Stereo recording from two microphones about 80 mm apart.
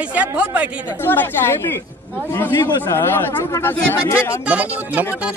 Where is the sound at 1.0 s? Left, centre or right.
Left.